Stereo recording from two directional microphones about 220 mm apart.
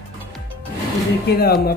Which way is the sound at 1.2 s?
45° left (ahead or behind).